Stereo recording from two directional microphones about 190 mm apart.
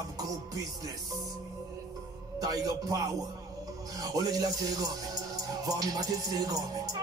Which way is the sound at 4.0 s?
20° right (ahead or behind).